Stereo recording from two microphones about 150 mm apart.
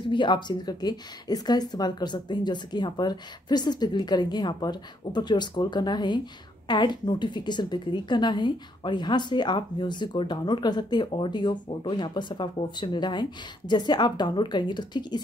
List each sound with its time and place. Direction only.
0.1 s a woman's voice: 30° left (ahead or behind)